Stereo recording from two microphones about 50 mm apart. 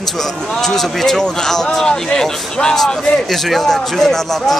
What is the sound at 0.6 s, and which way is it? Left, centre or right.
A man's voice, centre.